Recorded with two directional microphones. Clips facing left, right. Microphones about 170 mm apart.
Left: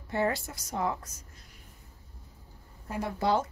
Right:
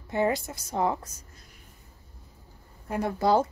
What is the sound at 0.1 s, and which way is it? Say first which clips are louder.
Speech: right 3 dB; 20° right (ahead or behind).